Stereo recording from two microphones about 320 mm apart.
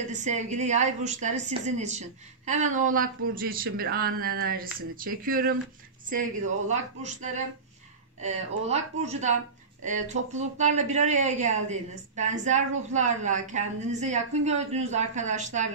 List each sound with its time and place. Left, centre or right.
0.1 s speech: right
6.7 s speech: right